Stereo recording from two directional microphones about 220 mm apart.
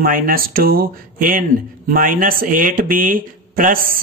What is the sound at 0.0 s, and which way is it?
Speech, 40° right (ahead or behind).